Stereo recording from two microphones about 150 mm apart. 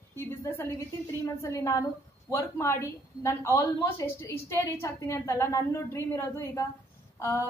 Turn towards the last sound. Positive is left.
turn(degrees=20)  # may be behind; listen again after turning